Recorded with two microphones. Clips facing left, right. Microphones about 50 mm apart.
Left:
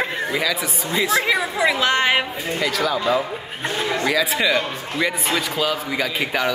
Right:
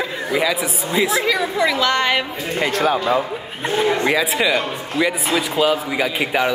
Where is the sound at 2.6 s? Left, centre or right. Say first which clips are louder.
Right 4 dB; right.